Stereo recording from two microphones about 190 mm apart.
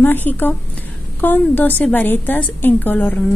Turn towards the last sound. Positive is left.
turn(degrees=10)  # may be behind; listen again after turning